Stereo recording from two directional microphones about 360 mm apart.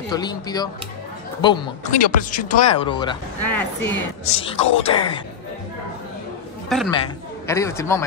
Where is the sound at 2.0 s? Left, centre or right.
Left.